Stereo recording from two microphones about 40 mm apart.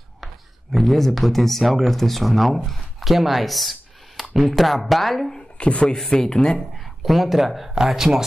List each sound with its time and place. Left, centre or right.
0.2 s speech: centre
5.6 s speech: left
6.0 s speech: centre
7.0 s speech: centre